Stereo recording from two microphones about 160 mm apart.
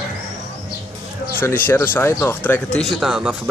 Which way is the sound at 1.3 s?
10° left (ahead or behind).